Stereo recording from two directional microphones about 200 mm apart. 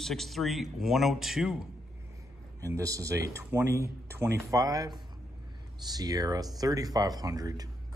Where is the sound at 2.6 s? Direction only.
15° right (ahead or behind).